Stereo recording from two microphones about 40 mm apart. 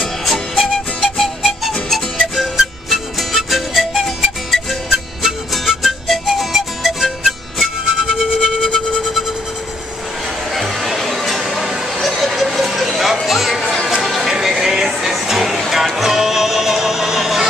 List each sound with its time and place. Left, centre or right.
0.0 s music: centre
10.5 s a sound: centre
14.0 s music: centre